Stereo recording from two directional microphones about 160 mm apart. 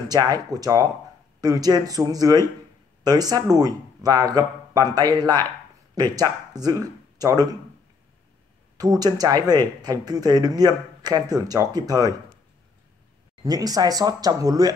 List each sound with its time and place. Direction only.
0.1 s speech: 25° right (ahead or behind)
8.7 s speech: 25° right (ahead or behind)
13.4 s speech: 25° right (ahead or behind)